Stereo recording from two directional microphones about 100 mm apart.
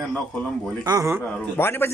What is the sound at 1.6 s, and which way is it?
Speech, 25° left (ahead or behind).